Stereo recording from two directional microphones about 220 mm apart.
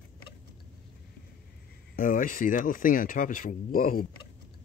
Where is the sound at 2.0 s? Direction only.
40° left (ahead or behind).